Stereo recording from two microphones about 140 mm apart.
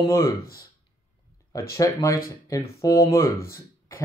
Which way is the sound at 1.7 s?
25° left (ahead or behind).